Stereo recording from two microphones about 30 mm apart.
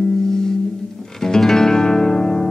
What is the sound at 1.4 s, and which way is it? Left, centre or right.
Music, centre.